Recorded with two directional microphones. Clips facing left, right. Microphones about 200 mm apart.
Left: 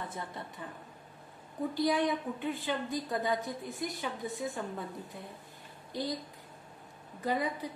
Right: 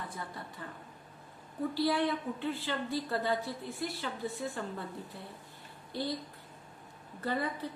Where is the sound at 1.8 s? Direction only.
15° left (ahead or behind).